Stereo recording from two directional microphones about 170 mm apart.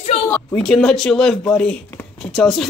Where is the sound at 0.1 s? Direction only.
35° left (ahead or behind).